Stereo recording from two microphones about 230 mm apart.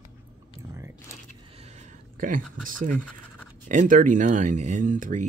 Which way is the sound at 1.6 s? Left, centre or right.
Right.